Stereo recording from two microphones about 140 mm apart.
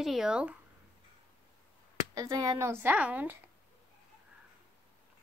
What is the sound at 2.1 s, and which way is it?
Speech, 25° right (ahead or behind).